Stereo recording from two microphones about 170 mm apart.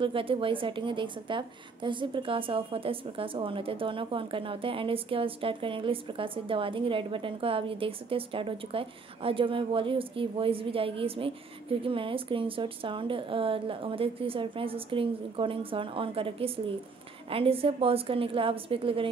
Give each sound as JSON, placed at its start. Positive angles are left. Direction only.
{"t": 0.0, "sound": "a woman's voice", "side_deg": -30}